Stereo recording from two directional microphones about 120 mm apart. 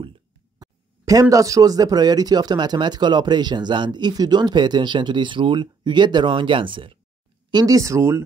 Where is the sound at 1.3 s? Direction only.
30° right (ahead or behind); by 6.9 s 45° right (ahead or behind).